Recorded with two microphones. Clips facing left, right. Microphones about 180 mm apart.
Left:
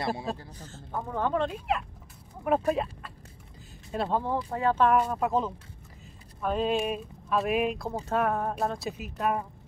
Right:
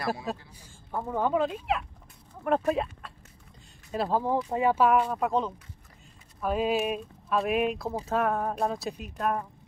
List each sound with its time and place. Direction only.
0.0 s speech: 25° left (ahead or behind)
0.5 s speech: 10° right (ahead or behind)
4.3 s speech: 15° right (ahead or behind); by 9.5 s 5° left (ahead or behind)